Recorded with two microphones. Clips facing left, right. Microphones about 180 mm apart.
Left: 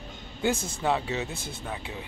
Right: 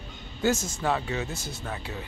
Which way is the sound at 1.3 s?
55° left (ahead or behind).